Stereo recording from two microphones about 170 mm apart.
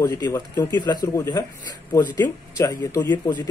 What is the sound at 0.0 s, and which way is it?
Speech, 20° left (ahead or behind).